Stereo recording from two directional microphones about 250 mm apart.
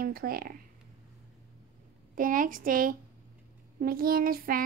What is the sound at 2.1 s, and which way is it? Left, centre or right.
A child's voice, right.